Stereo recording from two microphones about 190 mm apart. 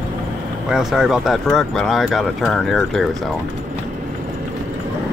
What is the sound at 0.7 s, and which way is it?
Speech, centre (ahead or behind).